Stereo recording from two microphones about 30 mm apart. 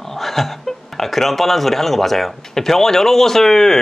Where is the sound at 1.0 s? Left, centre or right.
Centre.